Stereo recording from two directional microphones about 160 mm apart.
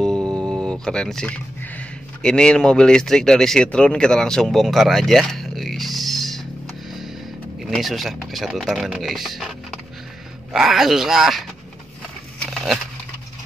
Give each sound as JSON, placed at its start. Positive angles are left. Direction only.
{"t": 0.0, "sound": "speech", "side_deg": 5}
{"t": 6.9, "sound": "music", "side_deg": 0}
{"t": 7.6, "sound": "speech", "side_deg": 0}
{"t": 12.4, "sound": "a sound", "side_deg": 0}